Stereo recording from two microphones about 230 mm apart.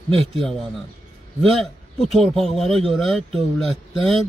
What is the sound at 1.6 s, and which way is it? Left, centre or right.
Speech, centre.